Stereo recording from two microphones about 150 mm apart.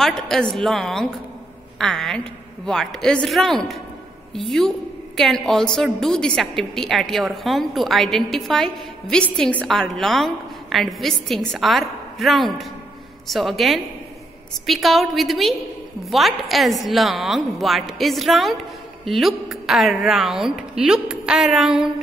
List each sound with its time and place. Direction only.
0.0 s a woman's voice: centre (ahead or behind)